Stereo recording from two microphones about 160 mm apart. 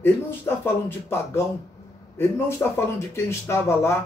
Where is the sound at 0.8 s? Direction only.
15° left (ahead or behind).